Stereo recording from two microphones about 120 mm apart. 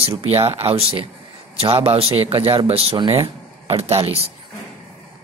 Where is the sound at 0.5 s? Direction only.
55° right (ahead or behind).